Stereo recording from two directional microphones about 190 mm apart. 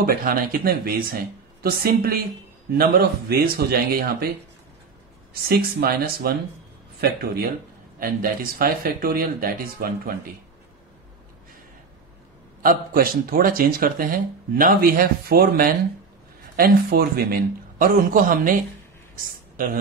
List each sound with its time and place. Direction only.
0.0 s speech: 50° right (ahead or behind)
5.3 s speech: 55° right (ahead or behind)
12.6 s speech: 50° right (ahead or behind)